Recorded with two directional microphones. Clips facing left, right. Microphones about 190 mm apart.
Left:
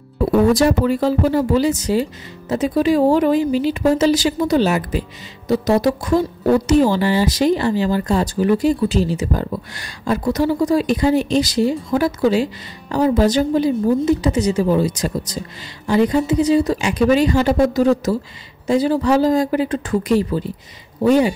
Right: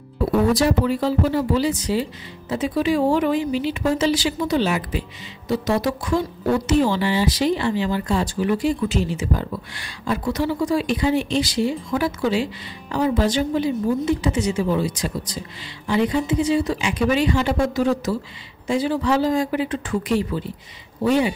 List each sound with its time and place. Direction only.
0.5 s speech: 45° left (ahead or behind)